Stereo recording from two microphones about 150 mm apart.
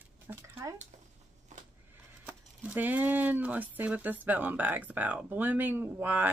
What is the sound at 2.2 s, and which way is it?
Speech, 10° right (ahead or behind).